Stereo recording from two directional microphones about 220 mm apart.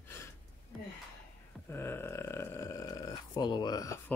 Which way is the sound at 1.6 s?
10° left (ahead or behind).